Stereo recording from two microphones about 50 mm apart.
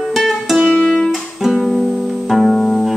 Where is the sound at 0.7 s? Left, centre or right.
Left.